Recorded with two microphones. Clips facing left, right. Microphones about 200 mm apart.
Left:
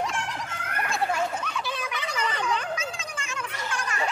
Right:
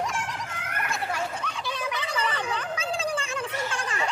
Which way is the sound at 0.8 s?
30° left (ahead or behind).